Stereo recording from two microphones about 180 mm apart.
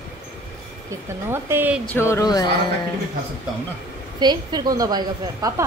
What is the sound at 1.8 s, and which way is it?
Speech, 15° left (ahead or behind).